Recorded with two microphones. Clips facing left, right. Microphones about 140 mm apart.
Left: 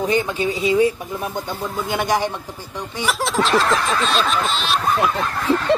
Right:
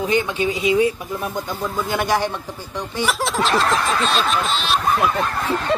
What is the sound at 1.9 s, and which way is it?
Speech, 20° left (ahead or behind).